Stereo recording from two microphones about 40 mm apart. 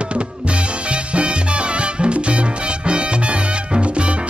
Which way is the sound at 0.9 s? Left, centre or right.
Right.